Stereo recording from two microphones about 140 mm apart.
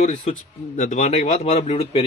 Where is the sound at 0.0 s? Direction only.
60° left (ahead or behind).